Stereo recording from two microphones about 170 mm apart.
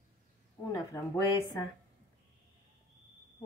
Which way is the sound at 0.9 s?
20° left (ahead or behind).